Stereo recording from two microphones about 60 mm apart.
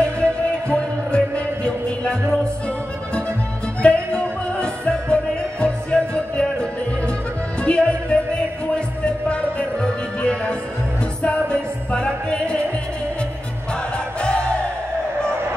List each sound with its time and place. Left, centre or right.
0.0 s music: centre
3.8 s music: centre
13.9 s music: centre